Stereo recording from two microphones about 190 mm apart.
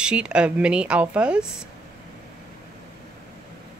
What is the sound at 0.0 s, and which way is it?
Speech, 5° right (ahead or behind).